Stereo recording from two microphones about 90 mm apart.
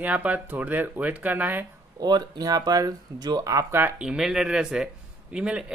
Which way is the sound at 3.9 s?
5° right (ahead or behind).